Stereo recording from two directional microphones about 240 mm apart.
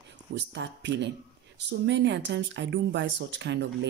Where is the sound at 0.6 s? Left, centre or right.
Right.